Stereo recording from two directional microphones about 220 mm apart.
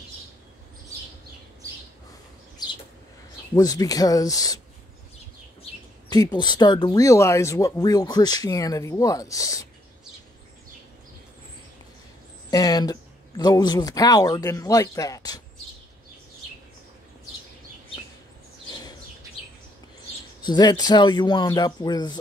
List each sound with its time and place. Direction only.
2.6 s a sound: 20° left (ahead or behind)
3.5 s speech: 15° left (ahead or behind)
5.6 s speech: 20° left (ahead or behind)
12.4 s speech: 15° left (ahead or behind)
20.4 s speech: 20° left (ahead or behind)